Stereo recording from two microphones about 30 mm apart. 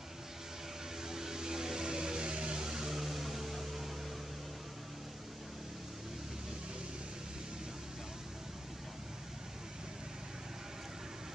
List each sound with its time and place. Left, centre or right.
1.0 s music: centre